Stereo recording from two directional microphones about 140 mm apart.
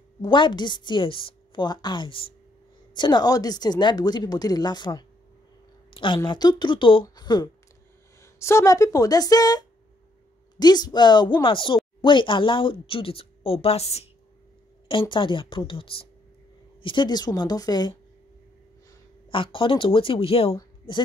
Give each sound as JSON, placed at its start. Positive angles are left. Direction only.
{"t": 0.2, "sound": "speech", "side_deg": 35}
{"t": 8.2, "sound": "speech", "side_deg": 20}
{"t": 14.9, "sound": "speech", "side_deg": 35}
{"t": 19.3, "sound": "speech", "side_deg": 40}